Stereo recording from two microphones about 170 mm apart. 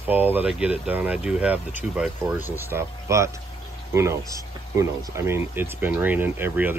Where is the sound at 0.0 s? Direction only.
10° right (ahead or behind).